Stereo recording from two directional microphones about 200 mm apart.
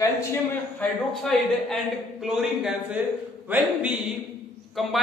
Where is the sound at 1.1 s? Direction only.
Centre (ahead or behind).